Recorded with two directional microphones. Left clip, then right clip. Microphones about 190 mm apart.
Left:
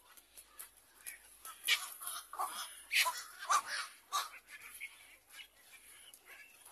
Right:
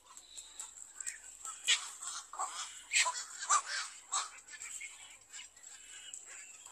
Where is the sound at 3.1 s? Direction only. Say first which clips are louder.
Right 1 dB; 40° left (ahead or behind).